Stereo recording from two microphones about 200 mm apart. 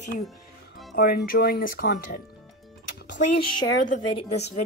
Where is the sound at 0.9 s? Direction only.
50° left (ahead or behind).